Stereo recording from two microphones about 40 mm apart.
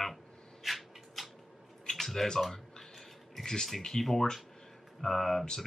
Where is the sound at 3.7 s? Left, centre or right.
Centre.